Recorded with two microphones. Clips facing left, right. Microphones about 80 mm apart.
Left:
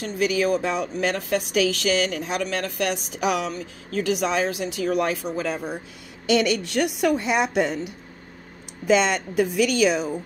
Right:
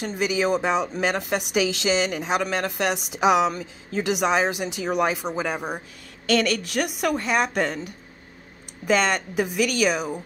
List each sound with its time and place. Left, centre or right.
0.0 s a woman's voice: centre
6.2 s a woman's voice: centre
6.6 s a woman's voice: centre
8.8 s a woman's voice: centre